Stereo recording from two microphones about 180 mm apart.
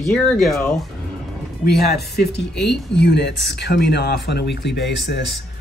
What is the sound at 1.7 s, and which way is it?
Speech, 65° left (ahead or behind).